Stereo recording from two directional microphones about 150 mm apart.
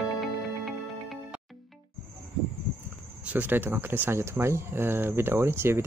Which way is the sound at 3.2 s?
10° right (ahead or behind).